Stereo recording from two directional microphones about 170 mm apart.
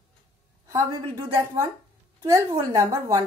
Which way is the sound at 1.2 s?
15° right (ahead or behind).